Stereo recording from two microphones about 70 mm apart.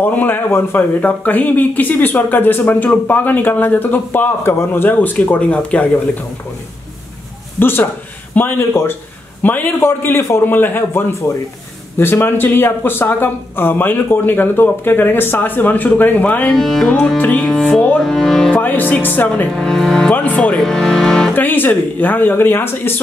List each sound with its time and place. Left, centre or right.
0.0 s speech: left
5.2 s speech: left
7.5 s a man's voice: left
9.4 s a man's voice: left
9.7 s a man's voice: left
16.5 s music: centre
17.6 s speech: left
18.0 s speech: centre
18.5 s speech: left
19.5 s speech: centre
20.1 s speech: left
20.5 s music: centre
21.3 s speech: left